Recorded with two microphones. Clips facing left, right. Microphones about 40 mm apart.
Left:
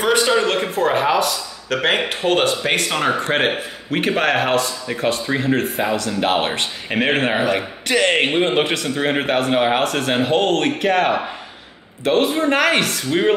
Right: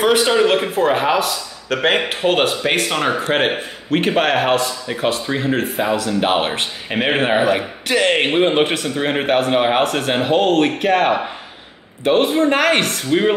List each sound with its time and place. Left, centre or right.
0.0 s a man's voice: centre